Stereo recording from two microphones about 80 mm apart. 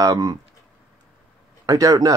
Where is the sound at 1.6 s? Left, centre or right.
Right.